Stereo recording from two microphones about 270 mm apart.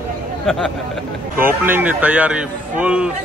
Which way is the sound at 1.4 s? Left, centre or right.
Centre.